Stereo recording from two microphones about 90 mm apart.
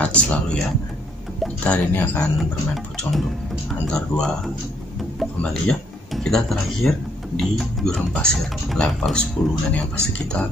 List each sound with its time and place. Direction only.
0.0 s speech: 15° left (ahead or behind)
1.6 s speech: 15° left (ahead or behind)
2.3 s music: centre (ahead or behind)
3.8 s speech: 10° left (ahead or behind)